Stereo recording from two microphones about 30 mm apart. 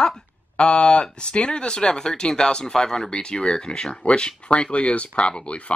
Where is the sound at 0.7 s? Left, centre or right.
Left.